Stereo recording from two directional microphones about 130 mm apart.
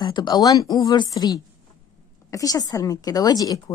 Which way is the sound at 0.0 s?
30° left (ahead or behind).